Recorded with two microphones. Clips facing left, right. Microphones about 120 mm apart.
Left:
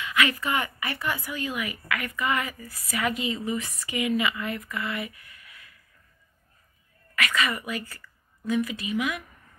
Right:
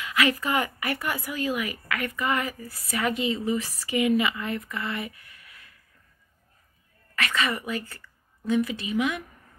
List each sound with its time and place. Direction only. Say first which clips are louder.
0.0 s a woman's voice: right 1 dB; 40° right (ahead or behind)
7.2 s a woman's voice: even; 30° right (ahead or behind)